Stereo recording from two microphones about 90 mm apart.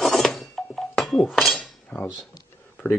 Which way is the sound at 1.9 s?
20° left (ahead or behind).